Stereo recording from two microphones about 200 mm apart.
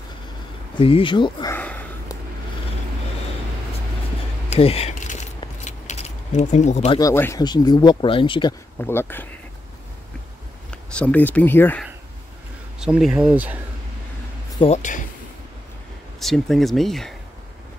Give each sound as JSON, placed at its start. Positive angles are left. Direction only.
{"t": 0.7, "sound": "speech", "side_deg": 25}
{"t": 1.5, "sound": "a sound", "side_deg": 10}
{"t": 4.5, "sound": "keys jangling", "side_deg": 30}
{"t": 7.0, "sound": "speech", "side_deg": 15}
{"t": 8.7, "sound": "speech", "side_deg": 10}
{"t": 11.0, "sound": "speech", "side_deg": 10}
{"t": 12.8, "sound": "speech", "side_deg": 0}
{"t": 14.6, "sound": "speech", "side_deg": 35}
{"t": 16.2, "sound": "speech", "side_deg": 0}